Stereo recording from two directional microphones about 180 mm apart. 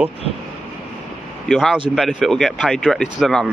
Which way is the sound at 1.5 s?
Centre (ahead or behind).